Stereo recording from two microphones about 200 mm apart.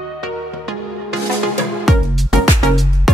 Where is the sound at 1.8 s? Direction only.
Centre (ahead or behind).